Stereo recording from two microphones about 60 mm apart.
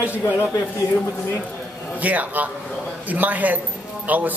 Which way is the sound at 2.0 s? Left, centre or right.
Right.